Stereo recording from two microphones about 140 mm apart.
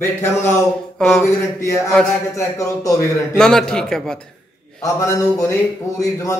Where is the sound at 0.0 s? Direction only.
15° left (ahead or behind).